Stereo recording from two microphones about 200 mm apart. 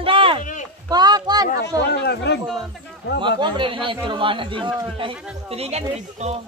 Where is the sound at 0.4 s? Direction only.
40° left (ahead or behind).